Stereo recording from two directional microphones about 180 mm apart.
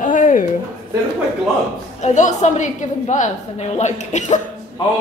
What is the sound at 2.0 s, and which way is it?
A woman's voice, 40° left (ahead or behind).